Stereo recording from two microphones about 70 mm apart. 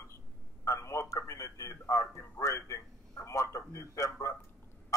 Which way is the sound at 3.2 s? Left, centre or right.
Left.